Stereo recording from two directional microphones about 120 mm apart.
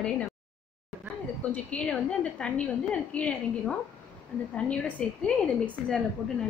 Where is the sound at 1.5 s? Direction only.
10° left (ahead or behind).